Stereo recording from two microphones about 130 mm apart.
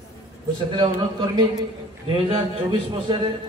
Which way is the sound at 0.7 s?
35° right (ahead or behind).